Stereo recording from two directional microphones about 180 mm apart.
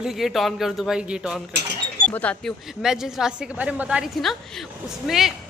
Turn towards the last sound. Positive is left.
turn(degrees=0)  # may be behind; listen again after turning